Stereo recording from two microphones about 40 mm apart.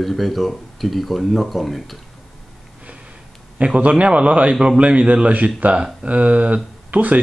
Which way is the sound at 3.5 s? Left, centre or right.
Right.